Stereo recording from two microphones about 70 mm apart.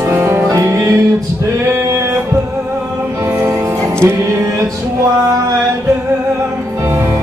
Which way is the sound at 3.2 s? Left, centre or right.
Right.